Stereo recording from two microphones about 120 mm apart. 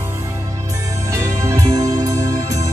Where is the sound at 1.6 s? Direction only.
30° right (ahead or behind).